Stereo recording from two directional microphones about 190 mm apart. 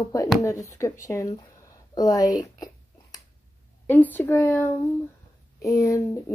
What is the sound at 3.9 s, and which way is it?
A woman's voice, 10° left (ahead or behind).